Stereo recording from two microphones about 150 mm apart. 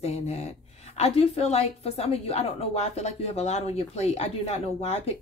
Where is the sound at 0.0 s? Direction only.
45° left (ahead or behind).